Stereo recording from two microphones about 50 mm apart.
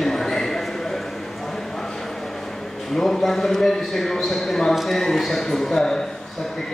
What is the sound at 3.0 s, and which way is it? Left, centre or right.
A man's voice, centre.